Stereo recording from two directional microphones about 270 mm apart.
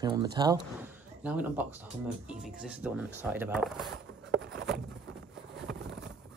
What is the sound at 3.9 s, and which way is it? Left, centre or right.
Patter, right.